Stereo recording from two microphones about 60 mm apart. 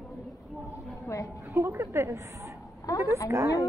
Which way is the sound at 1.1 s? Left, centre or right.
Left.